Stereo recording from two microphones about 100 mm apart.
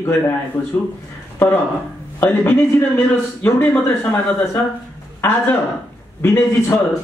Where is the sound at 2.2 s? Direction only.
20° left (ahead or behind).